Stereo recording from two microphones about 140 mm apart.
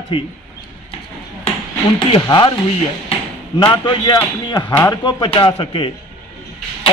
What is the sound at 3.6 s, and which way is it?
Speech, 35° left (ahead or behind).